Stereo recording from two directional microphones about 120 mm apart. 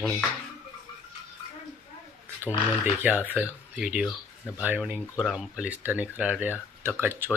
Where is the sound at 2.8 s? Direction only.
15° right (ahead or behind).